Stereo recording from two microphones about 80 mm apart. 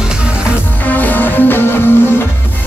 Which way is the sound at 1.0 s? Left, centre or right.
Left.